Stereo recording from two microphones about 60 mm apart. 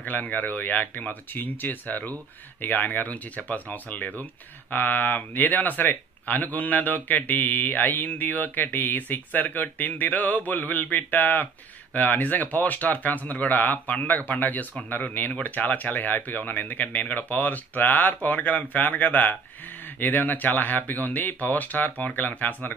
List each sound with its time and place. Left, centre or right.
0.0 s speech: left